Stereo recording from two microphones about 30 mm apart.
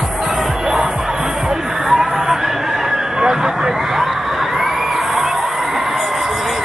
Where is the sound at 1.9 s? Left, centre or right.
Centre.